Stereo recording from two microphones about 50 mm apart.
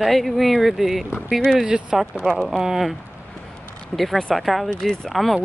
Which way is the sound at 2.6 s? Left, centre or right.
Centre.